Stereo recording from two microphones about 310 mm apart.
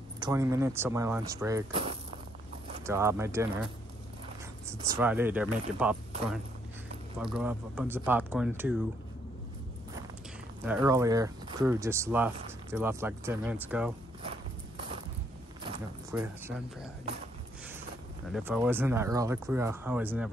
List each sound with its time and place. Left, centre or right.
0.2 s speech: centre
4.9 s speech: centre
7.2 s speech: centre
10.6 s speech: centre
14.2 s clip-clop: centre
15.6 s speech: centre
18.3 s speech: centre